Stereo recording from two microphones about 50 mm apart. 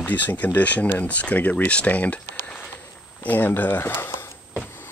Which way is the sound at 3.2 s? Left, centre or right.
Left.